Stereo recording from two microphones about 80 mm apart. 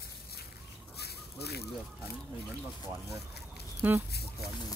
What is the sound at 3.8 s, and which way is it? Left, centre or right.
Speech, right.